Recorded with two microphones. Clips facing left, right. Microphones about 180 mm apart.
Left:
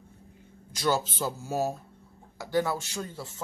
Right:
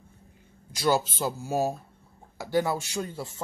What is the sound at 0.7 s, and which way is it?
Speech, 10° right (ahead or behind).